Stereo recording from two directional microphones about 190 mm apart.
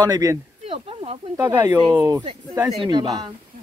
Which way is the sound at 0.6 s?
30° right (ahead or behind).